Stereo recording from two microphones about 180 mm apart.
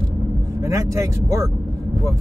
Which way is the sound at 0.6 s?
20° right (ahead or behind).